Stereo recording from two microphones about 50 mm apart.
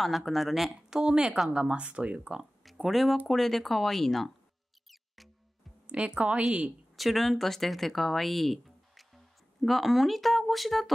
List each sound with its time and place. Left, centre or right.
0.0 s speech: centre
0.8 s speech: centre
2.6 s speech: centre
4.8 s mouse: centre
5.9 s speech: right
7.0 s speech: centre